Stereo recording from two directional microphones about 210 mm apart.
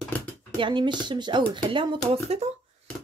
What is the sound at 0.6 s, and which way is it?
Speech, 20° right (ahead or behind).